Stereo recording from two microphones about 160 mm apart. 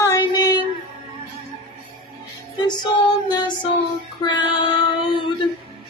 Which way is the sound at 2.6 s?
25° left (ahead or behind).